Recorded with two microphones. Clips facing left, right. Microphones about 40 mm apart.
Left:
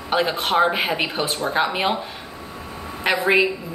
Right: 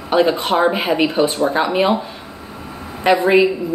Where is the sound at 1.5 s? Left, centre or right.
Centre.